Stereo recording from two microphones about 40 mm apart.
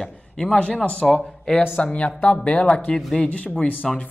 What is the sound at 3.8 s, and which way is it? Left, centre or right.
Speech, centre.